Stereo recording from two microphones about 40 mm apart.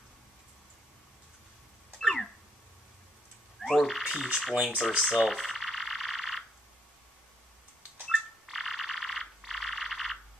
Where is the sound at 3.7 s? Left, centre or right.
Centre.